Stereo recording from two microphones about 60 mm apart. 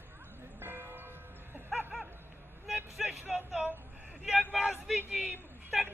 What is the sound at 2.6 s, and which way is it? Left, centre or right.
Speech, centre.